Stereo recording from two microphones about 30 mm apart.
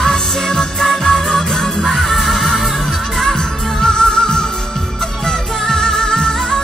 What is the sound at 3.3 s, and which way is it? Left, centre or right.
Music, left.